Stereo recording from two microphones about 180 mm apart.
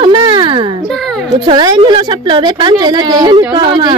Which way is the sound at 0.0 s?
25° right (ahead or behind).